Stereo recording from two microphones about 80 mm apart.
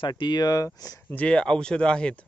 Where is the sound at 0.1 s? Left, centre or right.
Left.